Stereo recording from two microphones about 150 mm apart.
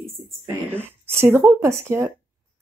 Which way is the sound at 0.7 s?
15° right (ahead or behind).